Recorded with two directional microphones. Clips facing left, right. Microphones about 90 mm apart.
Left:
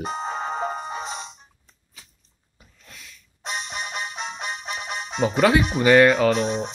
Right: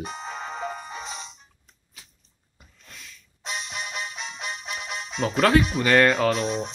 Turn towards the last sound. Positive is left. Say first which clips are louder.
# left 3 dB
turn(degrees=0)  # may be behind; listen again after turning